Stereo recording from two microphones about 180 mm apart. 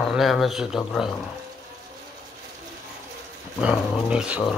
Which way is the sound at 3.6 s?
5° right (ahead or behind).